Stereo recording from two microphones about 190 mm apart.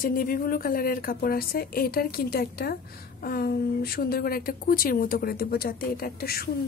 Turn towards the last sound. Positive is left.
turn(degrees=55)  # may be behind; listen again after turning